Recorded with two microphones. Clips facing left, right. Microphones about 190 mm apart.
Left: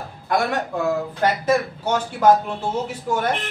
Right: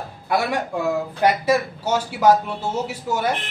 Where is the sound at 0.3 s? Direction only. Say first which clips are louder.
Even; 10° right (ahead or behind).